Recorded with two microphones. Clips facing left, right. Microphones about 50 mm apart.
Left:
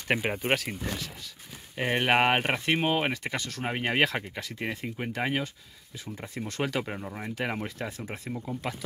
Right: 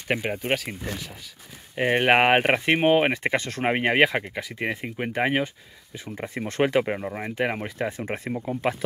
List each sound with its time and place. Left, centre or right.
0.1 s speech: centre
1.8 s speech: centre; by 3.9 s right
3.9 s speech: centre
8.0 s speech: right
8.3 s speech: right